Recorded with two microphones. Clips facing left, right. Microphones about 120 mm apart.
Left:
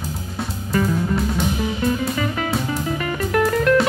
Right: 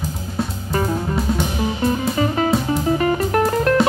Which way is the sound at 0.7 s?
30° right (ahead or behind).